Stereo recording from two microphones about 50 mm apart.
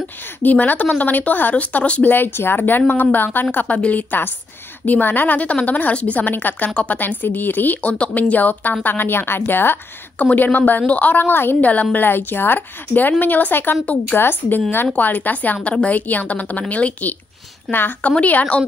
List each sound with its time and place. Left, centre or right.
0.4 s a woman's voice: left
2.0 s a woman's voice: left
6.7 s a woman's voice: left
7.0 s a woman's voice: left
7.8 s a woman's voice: left
10.3 s a woman's voice: left
11.6 s a woman's voice: left
17.6 s a woman's voice: left
18.2 s a woman's voice: left